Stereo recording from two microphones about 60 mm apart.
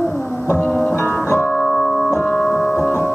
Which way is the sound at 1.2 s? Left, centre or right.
Left.